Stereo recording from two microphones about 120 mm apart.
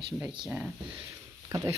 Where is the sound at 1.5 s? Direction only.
25° right (ahead or behind).